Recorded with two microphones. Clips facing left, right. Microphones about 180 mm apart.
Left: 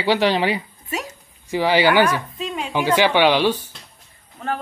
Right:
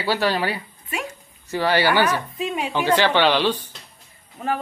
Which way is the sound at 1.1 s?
15° left (ahead or behind).